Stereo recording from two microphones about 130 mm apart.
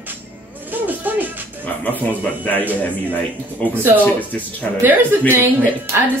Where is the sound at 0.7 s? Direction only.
15° right (ahead or behind).